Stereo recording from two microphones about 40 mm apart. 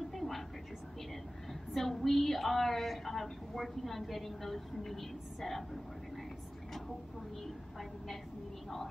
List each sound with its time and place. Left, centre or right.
0.1 s vehicle: centre
1.5 s a woman's voice: centre